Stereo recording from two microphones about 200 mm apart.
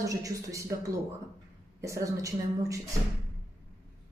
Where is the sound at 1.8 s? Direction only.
15° right (ahead or behind).